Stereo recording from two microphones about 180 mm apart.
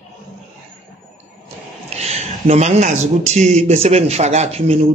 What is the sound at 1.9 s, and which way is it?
Speech, 35° right (ahead or behind).